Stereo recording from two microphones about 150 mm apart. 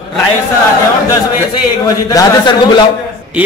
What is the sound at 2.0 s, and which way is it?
Speech, 25° left (ahead or behind).